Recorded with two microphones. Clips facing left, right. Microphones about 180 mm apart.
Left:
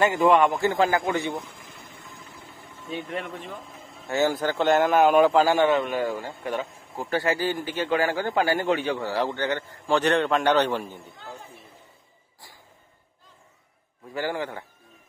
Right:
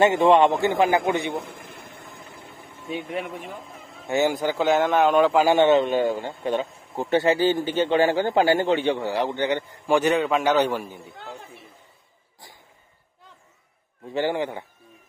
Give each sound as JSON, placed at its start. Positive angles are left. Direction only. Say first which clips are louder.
{"t": 0.0, "sound": "a man's voice", "louder": "right 3 dB", "side_deg": -25}
{"t": 1.3, "sound": "air conditioning", "louder": "right 3 dB", "side_deg": -60}
{"t": 2.9, "sound": "a man's voice", "louder": "right 2 dB", "side_deg": -10}
{"t": 4.6, "sound": "a man's voice", "louder": "left 1 dB", "side_deg": 0}
{"t": 5.4, "sound": "a man's voice", "louder": "right 3 dB", "side_deg": -20}
{"t": 11.1, "sound": "speech", "louder": "right 2 dB", "side_deg": -65}
{"t": 14.1, "sound": "a man's voice", "louder": "right 4 dB", "side_deg": -20}